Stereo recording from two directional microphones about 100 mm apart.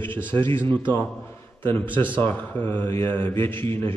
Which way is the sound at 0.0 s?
20° left (ahead or behind).